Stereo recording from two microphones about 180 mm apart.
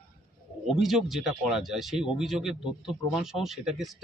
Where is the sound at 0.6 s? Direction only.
Centre (ahead or behind).